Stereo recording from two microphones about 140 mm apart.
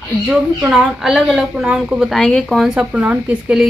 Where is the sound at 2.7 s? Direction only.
10° right (ahead or behind).